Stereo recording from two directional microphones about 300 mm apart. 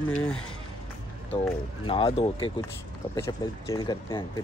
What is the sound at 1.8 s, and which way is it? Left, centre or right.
Speech, centre.